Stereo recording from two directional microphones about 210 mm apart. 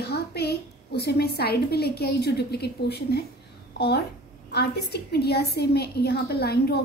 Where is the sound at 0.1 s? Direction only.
50° left (ahead or behind).